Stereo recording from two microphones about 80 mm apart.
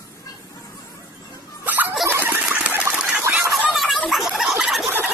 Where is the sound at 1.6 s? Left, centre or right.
Right.